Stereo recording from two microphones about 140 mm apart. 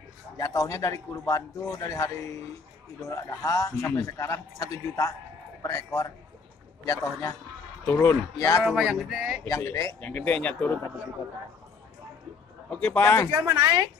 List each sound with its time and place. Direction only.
0.4 s a man's voice: 25° left (ahead or behind)
8.6 s a sound: centre (ahead or behind)
9.5 s a man's voice: 20° left (ahead or behind)
12.6 s speech: 10° left (ahead or behind)
13.3 s speech: 30° right (ahead or behind)